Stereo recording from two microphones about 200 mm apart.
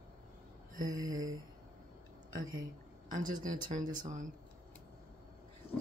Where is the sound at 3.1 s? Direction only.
40° right (ahead or behind).